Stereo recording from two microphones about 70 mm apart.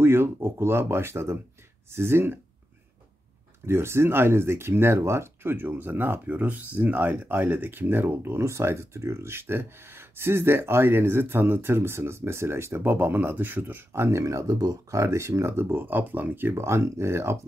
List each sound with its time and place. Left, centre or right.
0.0 s speech: right
3.6 s speech: right
14.5 s speech: right